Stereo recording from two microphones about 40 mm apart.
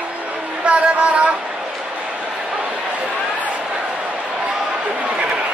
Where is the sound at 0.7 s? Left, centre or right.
Right.